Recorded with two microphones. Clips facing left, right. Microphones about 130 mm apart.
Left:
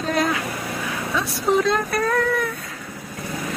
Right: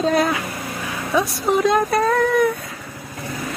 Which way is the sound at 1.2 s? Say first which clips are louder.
Right 2 dB; 15° right (ahead or behind).